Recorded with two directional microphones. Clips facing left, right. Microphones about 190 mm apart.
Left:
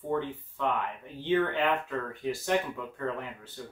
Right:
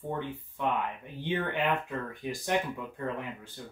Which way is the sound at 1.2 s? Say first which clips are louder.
Left 4 dB; 15° right (ahead or behind).